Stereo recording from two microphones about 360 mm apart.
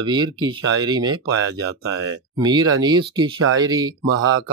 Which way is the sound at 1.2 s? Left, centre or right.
Right.